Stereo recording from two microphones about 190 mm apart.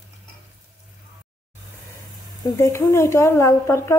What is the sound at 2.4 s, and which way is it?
Speech, 15° left (ahead or behind).